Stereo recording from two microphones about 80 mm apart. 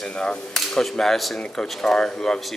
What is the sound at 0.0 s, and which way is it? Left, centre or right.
Speech, centre.